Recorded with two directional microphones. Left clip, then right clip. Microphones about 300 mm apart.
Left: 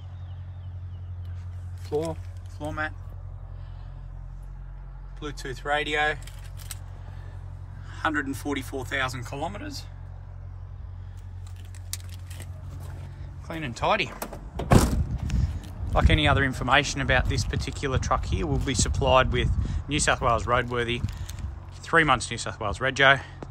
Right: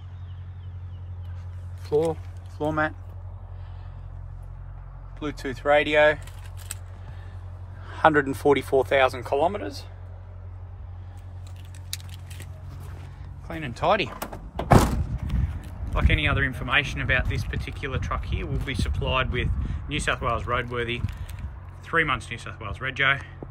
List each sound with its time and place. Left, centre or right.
1.9 s speech: centre
5.2 s speech: centre
7.8 s speech: centre
13.5 s speech: centre
15.3 s speech: centre